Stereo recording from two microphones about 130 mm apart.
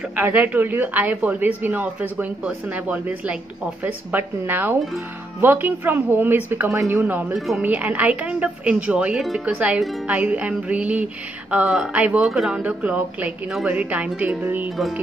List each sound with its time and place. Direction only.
0.1 s speech: 15° right (ahead or behind)
7.3 s speech: centre (ahead or behind)
7.6 s speech: 10° right (ahead or behind)